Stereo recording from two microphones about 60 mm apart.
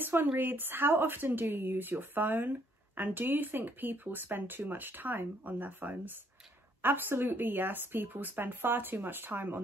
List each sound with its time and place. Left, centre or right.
0.0 s speech: right